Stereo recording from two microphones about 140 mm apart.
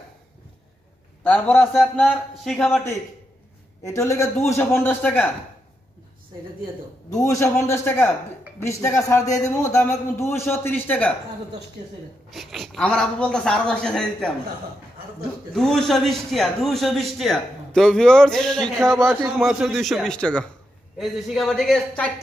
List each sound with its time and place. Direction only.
1.2 s speech: 10° left (ahead or behind)
1.7 s a man's voice: centre (ahead or behind)
3.8 s a man's voice: 20° left (ahead or behind)
7.2 s a man's voice: 20° left (ahead or behind)
12.3 s a man's voice: centre (ahead or behind)
15.5 s a man's voice: centre (ahead or behind)